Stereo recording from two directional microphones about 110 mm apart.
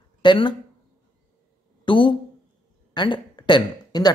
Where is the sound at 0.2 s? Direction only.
45° left (ahead or behind).